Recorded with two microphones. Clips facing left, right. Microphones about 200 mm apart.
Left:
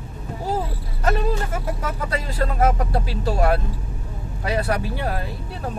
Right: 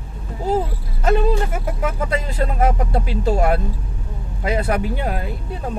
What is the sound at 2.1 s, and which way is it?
Speech, 25° right (ahead or behind).